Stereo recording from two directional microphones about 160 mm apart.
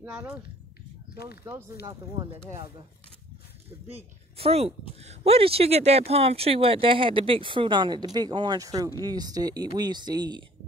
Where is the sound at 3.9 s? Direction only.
40° right (ahead or behind).